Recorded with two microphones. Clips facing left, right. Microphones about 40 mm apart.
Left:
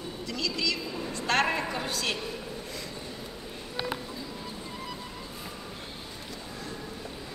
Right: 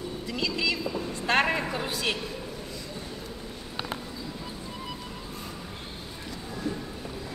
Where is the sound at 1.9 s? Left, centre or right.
Centre.